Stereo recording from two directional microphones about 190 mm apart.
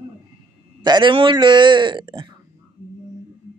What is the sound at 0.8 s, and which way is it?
Speech, 25° right (ahead or behind).